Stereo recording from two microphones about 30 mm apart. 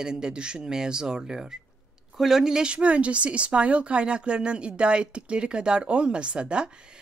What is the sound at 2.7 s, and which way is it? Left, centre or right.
A woman's voice, right.